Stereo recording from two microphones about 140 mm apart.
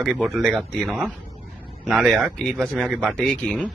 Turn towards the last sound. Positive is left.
turn(degrees=10)  # may be behind; listen again after turning